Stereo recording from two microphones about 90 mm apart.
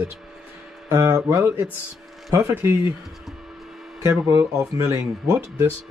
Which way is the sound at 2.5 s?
25° right (ahead or behind).